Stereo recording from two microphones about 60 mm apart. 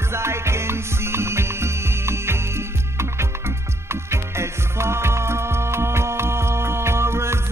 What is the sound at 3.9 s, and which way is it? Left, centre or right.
Music, right.